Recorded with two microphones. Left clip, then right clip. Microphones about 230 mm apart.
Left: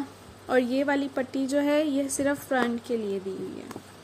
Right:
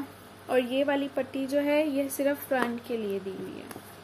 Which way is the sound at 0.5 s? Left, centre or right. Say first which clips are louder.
Left 1 dB; left.